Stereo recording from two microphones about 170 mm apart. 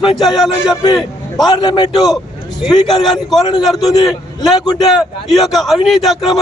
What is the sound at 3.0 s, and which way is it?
Speech, centre (ahead or behind).